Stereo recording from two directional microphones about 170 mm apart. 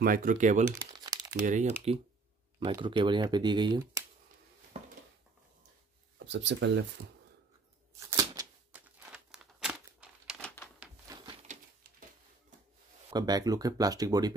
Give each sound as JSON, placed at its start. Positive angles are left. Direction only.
{"t": 0.0, "sound": "speech", "side_deg": -55}
{"t": 0.7, "sound": "crumpling", "side_deg": -20}
{"t": 1.4, "sound": "speech", "side_deg": -45}
{"t": 2.7, "sound": "speech", "side_deg": -30}
{"t": 4.7, "sound": "a sound", "side_deg": -40}
{"t": 6.1, "sound": "speech", "side_deg": -90}
{"t": 8.1, "sound": "shuffling cards", "side_deg": -20}
{"t": 8.7, "sound": "crumpling", "side_deg": -5}
{"t": 10.4, "sound": "a sound", "side_deg": 10}
{"t": 11.1, "sound": "a sound", "side_deg": -25}
{"t": 13.1, "sound": "speech", "side_deg": -25}